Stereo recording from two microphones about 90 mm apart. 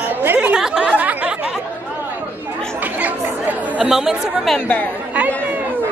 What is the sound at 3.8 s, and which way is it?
Speech, 5° right (ahead or behind).